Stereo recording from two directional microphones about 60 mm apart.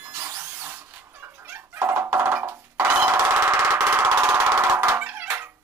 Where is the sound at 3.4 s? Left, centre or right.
Right.